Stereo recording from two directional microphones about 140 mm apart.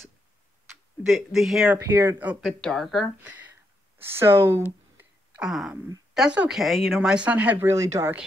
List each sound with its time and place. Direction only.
1.0 s speech: centre (ahead or behind)
1.8 s speech: 15° right (ahead or behind)
2.4 s speech: centre (ahead or behind)
3.2 s speech: 10° right (ahead or behind)
4.9 s a sound: 10° right (ahead or behind)
6.1 s speech: 5° right (ahead or behind)
7.7 s speech: 20° right (ahead or behind)